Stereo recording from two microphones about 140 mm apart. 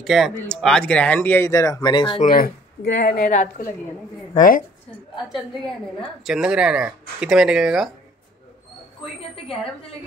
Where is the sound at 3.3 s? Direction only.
60° left (ahead or behind).